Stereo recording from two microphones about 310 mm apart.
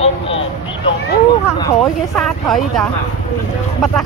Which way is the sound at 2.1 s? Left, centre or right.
Centre.